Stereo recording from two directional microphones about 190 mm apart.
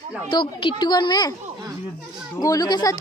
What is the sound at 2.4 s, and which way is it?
Speech, 20° left (ahead or behind).